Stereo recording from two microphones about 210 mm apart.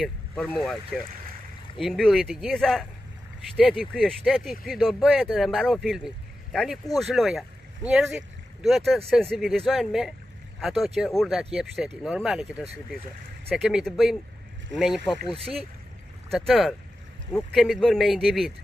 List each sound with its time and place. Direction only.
0.0 s speech: 5° left (ahead or behind)
16.3 s speech: centre (ahead or behind)